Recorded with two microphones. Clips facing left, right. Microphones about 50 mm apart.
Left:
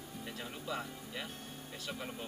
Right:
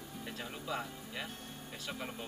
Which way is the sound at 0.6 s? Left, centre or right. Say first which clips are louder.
Right 1 dB; centre.